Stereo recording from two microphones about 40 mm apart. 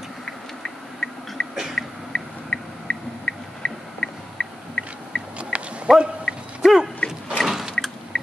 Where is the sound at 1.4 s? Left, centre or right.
Left.